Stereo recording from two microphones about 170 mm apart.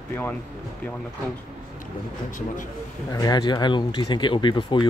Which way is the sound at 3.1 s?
20° left (ahead or behind).